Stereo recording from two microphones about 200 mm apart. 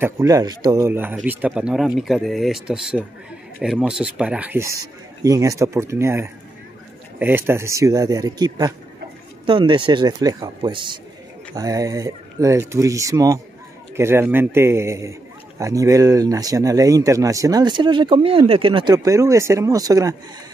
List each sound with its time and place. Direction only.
0.0 s speech: 15° right (ahead or behind)